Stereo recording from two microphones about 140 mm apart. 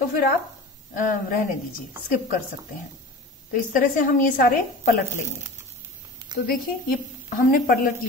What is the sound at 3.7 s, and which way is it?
Speech, 70° left (ahead or behind).